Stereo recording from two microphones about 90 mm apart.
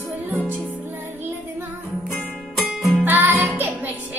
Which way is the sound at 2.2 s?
Centre (ahead or behind).